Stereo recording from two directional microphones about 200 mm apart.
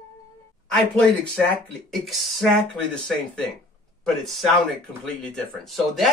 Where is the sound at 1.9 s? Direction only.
Centre (ahead or behind).